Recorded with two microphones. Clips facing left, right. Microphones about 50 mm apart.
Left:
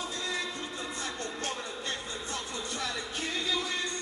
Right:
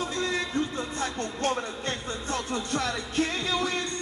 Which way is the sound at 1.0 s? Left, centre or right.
Right.